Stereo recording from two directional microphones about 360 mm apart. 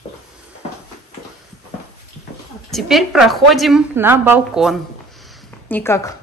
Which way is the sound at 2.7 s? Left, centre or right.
Centre.